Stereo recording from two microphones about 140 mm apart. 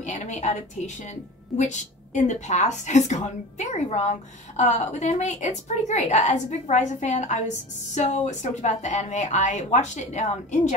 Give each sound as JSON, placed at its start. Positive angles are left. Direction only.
{"t": 0.0, "sound": "a woman's voice", "side_deg": 55}